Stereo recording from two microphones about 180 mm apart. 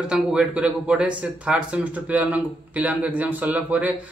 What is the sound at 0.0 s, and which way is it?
Speech, 5° right (ahead or behind).